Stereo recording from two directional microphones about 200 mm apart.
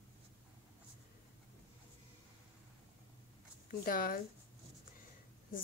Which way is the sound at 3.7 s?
45° left (ahead or behind).